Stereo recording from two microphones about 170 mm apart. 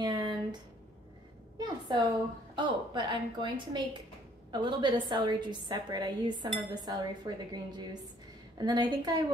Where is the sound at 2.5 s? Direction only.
25° right (ahead or behind).